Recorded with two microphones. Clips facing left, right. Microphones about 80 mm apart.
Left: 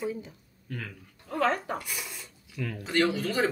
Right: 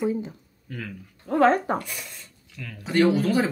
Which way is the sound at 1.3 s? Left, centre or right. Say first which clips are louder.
Right 8 dB; right.